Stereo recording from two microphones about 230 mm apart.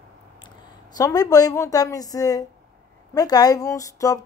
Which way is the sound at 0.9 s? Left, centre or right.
Centre.